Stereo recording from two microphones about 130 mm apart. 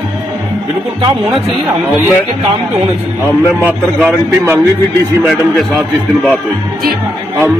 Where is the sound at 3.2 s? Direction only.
15° right (ahead or behind).